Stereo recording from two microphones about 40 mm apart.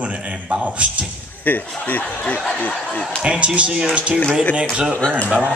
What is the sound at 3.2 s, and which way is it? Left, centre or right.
A man's voice, right.